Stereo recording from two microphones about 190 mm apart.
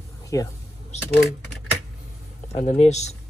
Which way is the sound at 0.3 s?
15° left (ahead or behind).